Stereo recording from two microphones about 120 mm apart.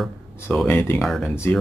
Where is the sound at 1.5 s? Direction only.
15° left (ahead or behind).